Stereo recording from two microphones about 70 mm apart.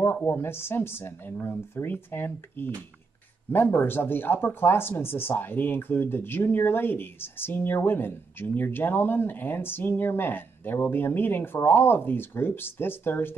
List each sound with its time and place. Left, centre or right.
0.0 s speech: left